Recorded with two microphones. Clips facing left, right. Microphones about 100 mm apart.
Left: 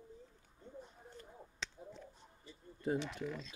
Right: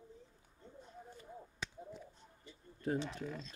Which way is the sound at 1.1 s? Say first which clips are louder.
Right 2 dB; 5° right (ahead or behind).